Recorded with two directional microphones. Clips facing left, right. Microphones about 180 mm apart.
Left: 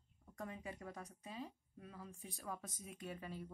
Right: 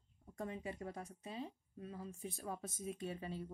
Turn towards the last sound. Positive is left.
turn(degrees=-30)  # may be behind; listen again after turning